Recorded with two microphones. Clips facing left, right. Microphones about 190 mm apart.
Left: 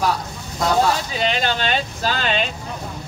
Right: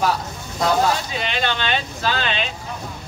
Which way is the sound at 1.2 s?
40° left (ahead or behind).